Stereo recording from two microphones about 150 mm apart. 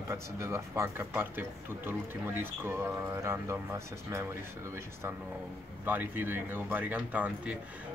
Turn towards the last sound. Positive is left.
turn(degrees=-10)  # may be behind; listen again after turning